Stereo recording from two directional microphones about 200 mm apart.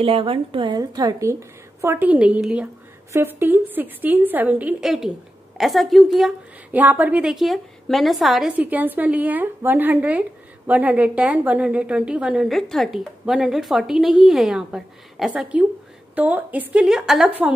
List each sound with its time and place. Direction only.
0.0 s a woman's voice: 25° right (ahead or behind); by 17.3 s centre (ahead or behind)